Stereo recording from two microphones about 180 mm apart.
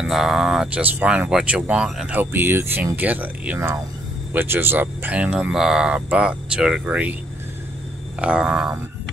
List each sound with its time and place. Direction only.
0.0 s speech: centre (ahead or behind)
8.2 s speech: 5° right (ahead or behind)